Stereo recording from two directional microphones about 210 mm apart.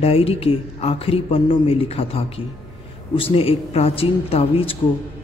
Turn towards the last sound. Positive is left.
turn(degrees=25)  # may be behind; listen again after turning